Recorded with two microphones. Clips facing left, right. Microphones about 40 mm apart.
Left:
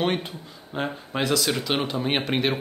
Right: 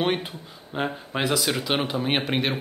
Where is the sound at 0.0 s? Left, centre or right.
Centre.